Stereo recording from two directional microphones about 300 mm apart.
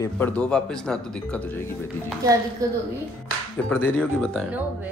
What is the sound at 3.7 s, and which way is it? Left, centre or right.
Speech, centre.